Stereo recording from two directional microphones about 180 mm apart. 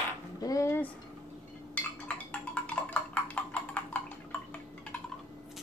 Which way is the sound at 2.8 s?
10° left (ahead or behind).